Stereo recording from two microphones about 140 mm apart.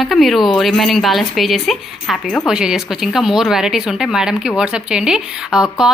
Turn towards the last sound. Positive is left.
turn(degrees=-5)  # may be behind; listen again after turning